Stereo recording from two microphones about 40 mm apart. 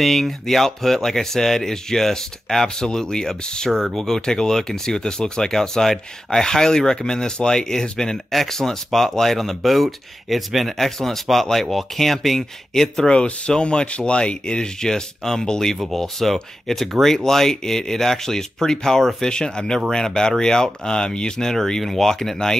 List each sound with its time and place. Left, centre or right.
0.0 s speech: centre
13.0 s speech: left